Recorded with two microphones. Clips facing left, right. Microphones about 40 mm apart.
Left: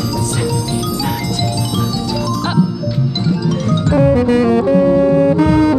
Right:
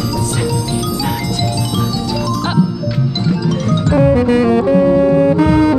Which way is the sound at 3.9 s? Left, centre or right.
Right.